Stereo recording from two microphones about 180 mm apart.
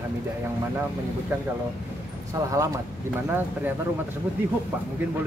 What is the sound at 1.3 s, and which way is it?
A woman's voice, 15° right (ahead or behind).